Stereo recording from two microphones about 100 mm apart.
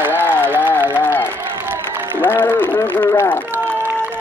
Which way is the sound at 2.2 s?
20° left (ahead or behind).